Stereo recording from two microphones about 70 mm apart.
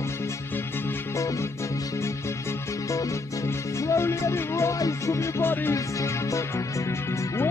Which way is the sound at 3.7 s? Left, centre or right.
Left.